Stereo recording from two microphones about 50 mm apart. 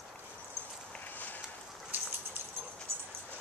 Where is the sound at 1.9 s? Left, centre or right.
Right.